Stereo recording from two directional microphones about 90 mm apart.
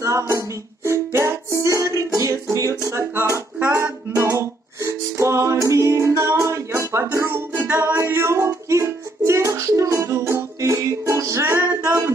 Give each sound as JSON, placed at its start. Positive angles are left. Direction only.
{"t": 0.3, "sound": "music", "side_deg": -35}
{"t": 2.5, "sound": "a sound", "side_deg": -35}
{"t": 3.7, "sound": "music", "side_deg": -30}
{"t": 8.0, "sound": "music", "side_deg": -30}